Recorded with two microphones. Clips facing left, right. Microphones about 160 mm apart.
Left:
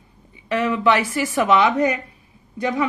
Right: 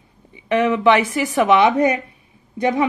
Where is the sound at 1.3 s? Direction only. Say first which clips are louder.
Right 3 dB; 20° right (ahead or behind).